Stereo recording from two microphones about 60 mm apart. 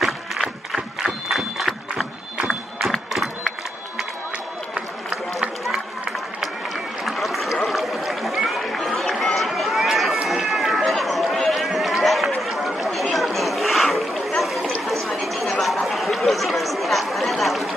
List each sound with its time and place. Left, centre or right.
0.0 s applause: centre
3.1 s crowd: centre
4.7 s run: centre
7.1 s a sound: centre
10.2 s run: centre
12.4 s chatter: centre